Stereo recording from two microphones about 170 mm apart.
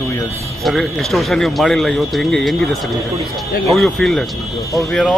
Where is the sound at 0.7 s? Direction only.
Centre (ahead or behind).